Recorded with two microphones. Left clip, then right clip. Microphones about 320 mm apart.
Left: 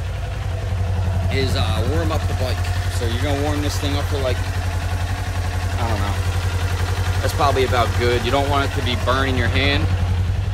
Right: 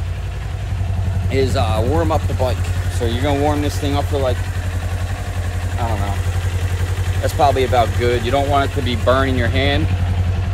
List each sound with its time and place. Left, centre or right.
1.3 s speech: centre
5.8 s speech: centre
7.2 s speech: centre